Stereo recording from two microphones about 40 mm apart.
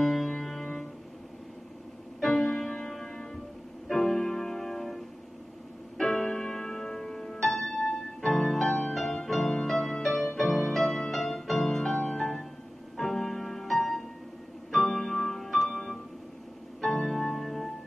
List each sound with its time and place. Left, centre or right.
0.0 s music: centre
2.1 s music: centre
5.9 s music: centre
12.0 s music: left
12.9 s music: centre
14.7 s piano: centre
16.8 s music: centre